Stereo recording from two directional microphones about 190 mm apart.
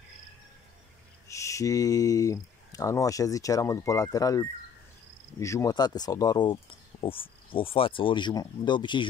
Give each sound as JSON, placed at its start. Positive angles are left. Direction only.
{"t": 1.3, "sound": "speech", "side_deg": 15}